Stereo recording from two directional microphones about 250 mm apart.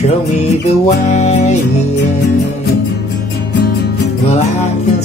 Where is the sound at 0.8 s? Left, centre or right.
Left.